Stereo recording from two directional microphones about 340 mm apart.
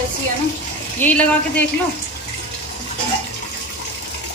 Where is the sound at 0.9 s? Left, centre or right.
Centre.